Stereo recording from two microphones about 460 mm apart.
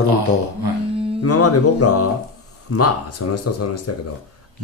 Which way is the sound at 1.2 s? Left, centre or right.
Left.